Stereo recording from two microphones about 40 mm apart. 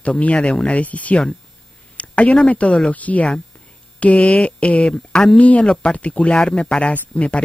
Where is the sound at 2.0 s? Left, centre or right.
Left.